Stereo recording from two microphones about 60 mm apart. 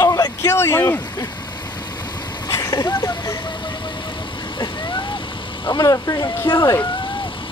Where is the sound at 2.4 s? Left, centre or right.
Left.